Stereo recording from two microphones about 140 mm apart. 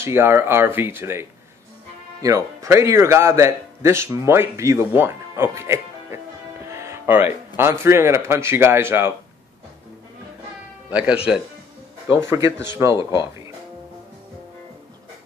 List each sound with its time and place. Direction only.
0.0 s speech: 15° right (ahead or behind)
2.2 s speech: 25° right (ahead or behind)
6.6 s music: 20° right (ahead or behind)
7.8 s speech: 20° right (ahead or behind)
10.9 s speech: 10° right (ahead or behind)